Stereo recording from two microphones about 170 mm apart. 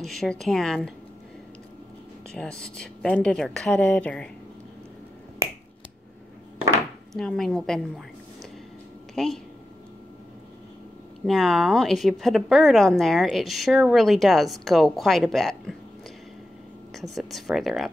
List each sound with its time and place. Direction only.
0.0 s a woman's voice: centre (ahead or behind)
2.3 s a woman's voice: 5° left (ahead or behind)
7.2 s a woman's voice: centre (ahead or behind)
9.1 s speech: centre (ahead or behind)
11.2 s a woman's voice: centre (ahead or behind)
17.1 s a woman's voice: centre (ahead or behind)